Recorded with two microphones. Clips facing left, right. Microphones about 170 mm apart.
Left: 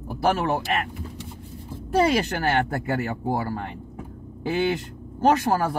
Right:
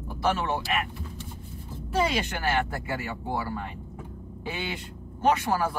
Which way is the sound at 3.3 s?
35° left (ahead or behind).